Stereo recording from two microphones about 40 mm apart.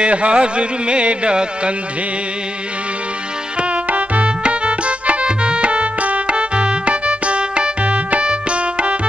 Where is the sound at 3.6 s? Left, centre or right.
Right.